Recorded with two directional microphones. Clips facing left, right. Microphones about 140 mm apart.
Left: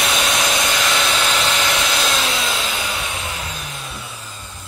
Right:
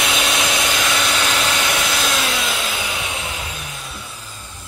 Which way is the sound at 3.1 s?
15° right (ahead or behind).